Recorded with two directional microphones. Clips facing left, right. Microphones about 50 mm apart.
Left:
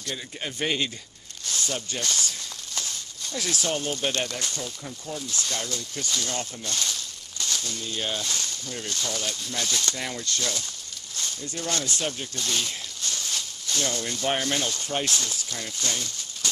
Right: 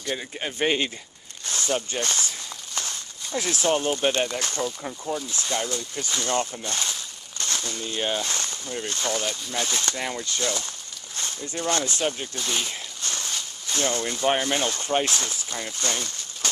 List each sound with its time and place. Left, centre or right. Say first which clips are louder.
0.1 s speech: right 4 dB; centre
1.5 s snake: right 4 dB; right
3.3 s speech: right 5 dB; right
4.4 s speech: right 5 dB; right
4.8 s speech: right 5 dB; right
7.3 s speech: right 1 dB; right
8.3 s a sound: right 2 dB; right
8.8 s speech: right 4 dB; right
9.2 s speech: right 3 dB; centre
9.9 s speech: right 2 dB; centre
12.0 s speech: right 3 dB; centre
13.7 s speech: right 3 dB; right
14.0 s speech: right 4 dB; centre
14.7 s speech: right 4 dB; right